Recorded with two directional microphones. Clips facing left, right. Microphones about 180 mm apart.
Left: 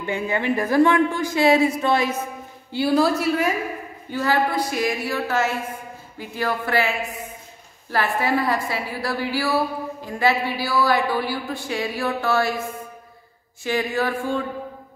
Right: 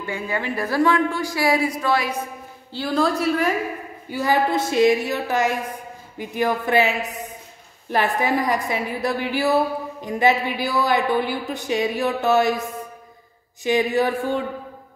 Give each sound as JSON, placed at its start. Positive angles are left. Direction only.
{"t": 0.0, "sound": "a woman's voice", "side_deg": 20}
{"t": 2.7, "sound": "a woman's voice", "side_deg": 10}
{"t": 4.1, "sound": "a woman's voice", "side_deg": -10}
{"t": 4.5, "sound": "a woman's voice", "side_deg": -25}